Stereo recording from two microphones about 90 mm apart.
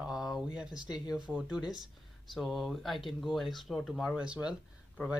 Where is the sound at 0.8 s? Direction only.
50° left (ahead or behind).